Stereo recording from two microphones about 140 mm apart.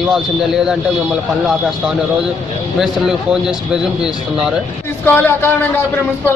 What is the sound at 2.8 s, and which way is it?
Speech, 5° right (ahead or behind).